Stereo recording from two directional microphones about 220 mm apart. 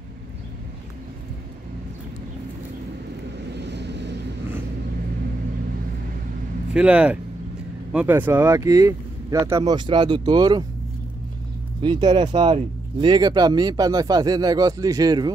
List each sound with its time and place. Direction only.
3.4 s vehicle: 50° right (ahead or behind)
6.7 s speech: 5° right (ahead or behind)
11.8 s speech: 20° right (ahead or behind)